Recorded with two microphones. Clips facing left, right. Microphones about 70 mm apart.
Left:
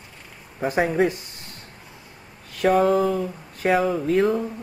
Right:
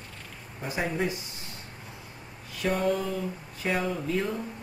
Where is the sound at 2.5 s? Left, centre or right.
Left.